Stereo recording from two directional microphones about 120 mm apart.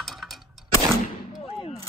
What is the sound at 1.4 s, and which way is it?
Speech, 50° left (ahead or behind).